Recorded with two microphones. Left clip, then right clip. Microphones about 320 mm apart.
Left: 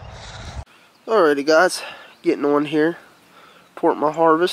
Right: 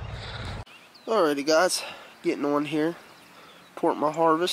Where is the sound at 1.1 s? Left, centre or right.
Centre.